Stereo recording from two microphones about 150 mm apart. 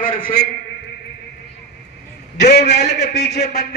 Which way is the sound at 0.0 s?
65° left (ahead or behind).